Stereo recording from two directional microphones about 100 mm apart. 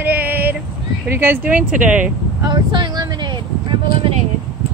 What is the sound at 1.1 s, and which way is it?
Speech, 20° right (ahead or behind).